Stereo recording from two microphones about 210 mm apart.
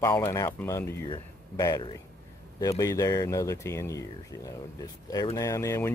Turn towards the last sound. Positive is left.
turn(degrees=15)  # may be behind; listen again after turning